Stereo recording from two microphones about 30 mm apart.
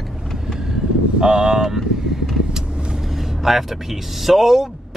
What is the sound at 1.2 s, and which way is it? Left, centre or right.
Speech, right.